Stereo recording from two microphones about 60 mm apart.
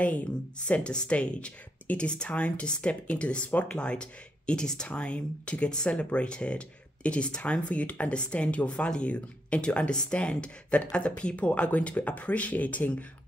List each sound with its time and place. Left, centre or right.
0.0 s speech: left